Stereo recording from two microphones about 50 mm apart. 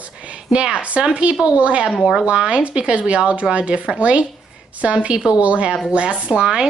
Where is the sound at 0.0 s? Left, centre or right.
Right.